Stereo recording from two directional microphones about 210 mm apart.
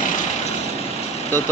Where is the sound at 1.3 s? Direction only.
10° left (ahead or behind).